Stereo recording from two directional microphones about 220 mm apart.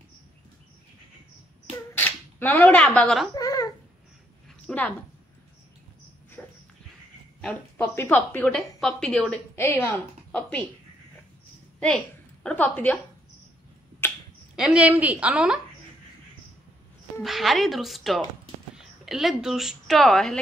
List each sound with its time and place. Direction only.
2.0 s speech: 10° left (ahead or behind)
3.3 s babbling: 15° left (ahead or behind)
4.6 s a woman's voice: 5° left (ahead or behind)
6.4 s dog: 5° left (ahead or behind)
7.4 s a woman's voice: 10° left (ahead or behind)
12.4 s a woman's voice: 5° left (ahead or behind)
14.0 s a sound: 10° left (ahead or behind)
14.5 s a woman's voice: 5° right (ahead or behind)
17.2 s a woman's voice: centre (ahead or behind)